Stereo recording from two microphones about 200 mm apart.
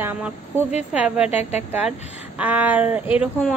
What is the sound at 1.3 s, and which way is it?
Speech, 35° left (ahead or behind).